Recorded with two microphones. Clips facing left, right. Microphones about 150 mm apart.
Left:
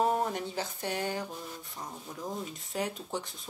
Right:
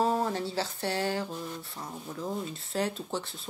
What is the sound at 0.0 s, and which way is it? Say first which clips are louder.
A woman's voice: right 1 dB; 20° left (ahead or behind).